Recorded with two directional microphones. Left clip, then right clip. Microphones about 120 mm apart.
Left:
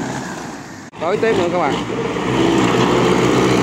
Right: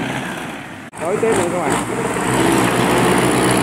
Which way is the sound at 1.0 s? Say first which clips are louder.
Left 1 dB; 10° left (ahead or behind).